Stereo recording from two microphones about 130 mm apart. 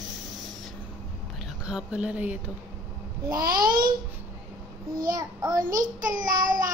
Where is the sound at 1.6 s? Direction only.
10° right (ahead or behind).